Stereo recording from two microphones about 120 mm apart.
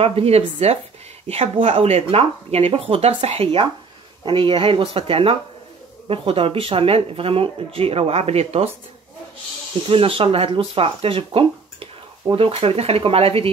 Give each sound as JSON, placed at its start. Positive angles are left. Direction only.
{"t": 0.0, "sound": "speech", "side_deg": -55}
{"t": 4.2, "sound": "speech", "side_deg": -45}
{"t": 9.8, "sound": "speech", "side_deg": -50}